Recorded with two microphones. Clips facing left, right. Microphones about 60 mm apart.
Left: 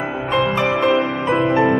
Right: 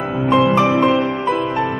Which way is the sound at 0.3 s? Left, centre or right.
Centre.